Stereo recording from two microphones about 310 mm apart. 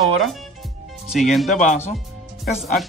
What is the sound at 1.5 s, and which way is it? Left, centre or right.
Speech, left.